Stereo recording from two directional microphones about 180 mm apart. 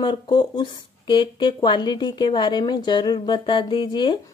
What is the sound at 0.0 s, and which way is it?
Speech, 25° left (ahead or behind).